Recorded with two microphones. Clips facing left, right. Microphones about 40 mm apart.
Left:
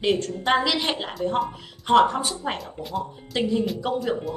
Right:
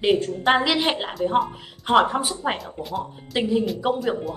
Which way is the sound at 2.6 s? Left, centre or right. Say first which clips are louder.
Right 1 dB; centre.